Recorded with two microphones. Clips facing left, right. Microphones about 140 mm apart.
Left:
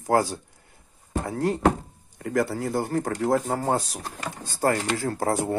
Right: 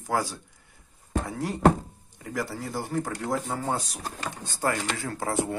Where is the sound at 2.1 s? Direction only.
55° left (ahead or behind).